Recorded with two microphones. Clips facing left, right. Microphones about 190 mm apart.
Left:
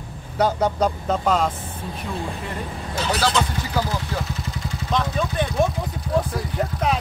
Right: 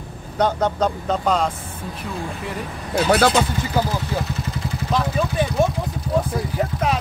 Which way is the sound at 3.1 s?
55° right (ahead or behind).